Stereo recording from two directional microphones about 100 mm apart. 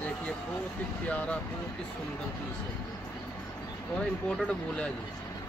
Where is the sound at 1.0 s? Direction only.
15° left (ahead or behind).